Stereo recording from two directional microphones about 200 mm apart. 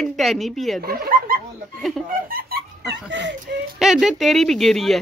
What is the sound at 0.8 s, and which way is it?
Speech, 50° right (ahead or behind).